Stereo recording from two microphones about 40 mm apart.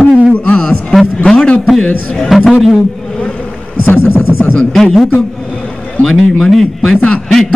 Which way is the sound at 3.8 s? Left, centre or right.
Left.